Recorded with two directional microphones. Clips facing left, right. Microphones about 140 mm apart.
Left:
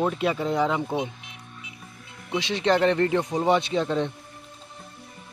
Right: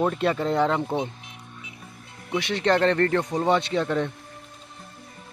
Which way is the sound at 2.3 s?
15° left (ahead or behind).